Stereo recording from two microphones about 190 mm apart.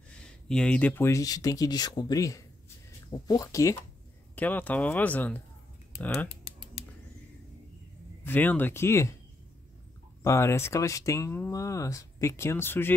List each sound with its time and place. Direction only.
0.5 s speech: 5° left (ahead or behind)
8.2 s speech: 10° left (ahead or behind)
10.2 s speech: 15° left (ahead or behind)